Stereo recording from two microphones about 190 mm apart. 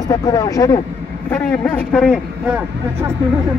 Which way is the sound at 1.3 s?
5° left (ahead or behind).